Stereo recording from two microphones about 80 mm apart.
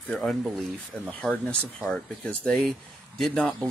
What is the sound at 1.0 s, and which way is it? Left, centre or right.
Speech, centre.